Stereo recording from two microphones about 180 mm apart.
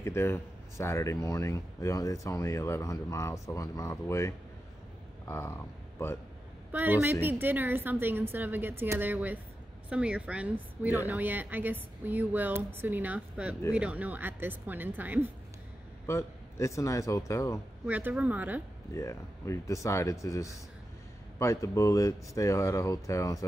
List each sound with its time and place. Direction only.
0.0 s speech: 15° left (ahead or behind)
6.7 s a woman's voice: 10° right (ahead or behind)
16.1 s speech: 15° left (ahead or behind)
17.8 s a woman's voice: 10° right (ahead or behind)
18.9 s speech: 15° left (ahead or behind)